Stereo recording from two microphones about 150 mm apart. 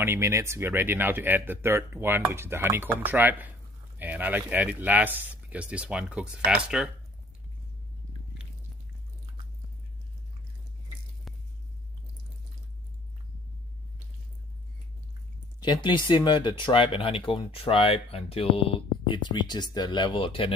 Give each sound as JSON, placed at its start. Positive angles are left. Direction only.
{"t": 0.0, "sound": "speech", "side_deg": -15}
{"t": 11.3, "sound": "a sound", "side_deg": 0}
{"t": 15.6, "sound": "speech", "side_deg": 30}